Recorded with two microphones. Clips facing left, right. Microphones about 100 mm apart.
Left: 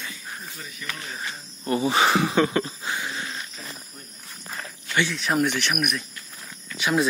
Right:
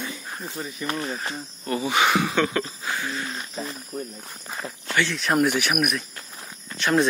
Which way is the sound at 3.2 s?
30° right (ahead or behind).